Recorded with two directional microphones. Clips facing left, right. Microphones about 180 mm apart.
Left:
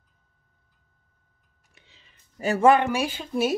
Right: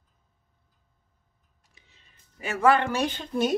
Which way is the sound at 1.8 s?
90° left.